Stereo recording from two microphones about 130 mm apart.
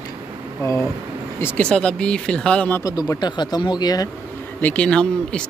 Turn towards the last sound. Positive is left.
turn(degrees=10)  # may be behind; listen again after turning